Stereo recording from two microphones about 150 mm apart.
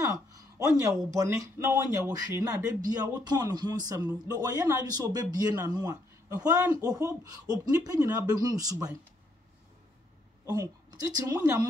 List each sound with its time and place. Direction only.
0.0 s speech: 20° right (ahead or behind)
2.4 s speech: 25° right (ahead or behind)
10.4 s a woman's voice: 25° right (ahead or behind)